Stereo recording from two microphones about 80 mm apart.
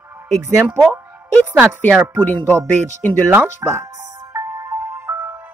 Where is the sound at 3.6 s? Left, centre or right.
Right.